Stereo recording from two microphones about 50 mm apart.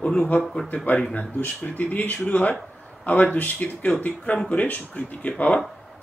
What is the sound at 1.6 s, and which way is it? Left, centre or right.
Speech, left.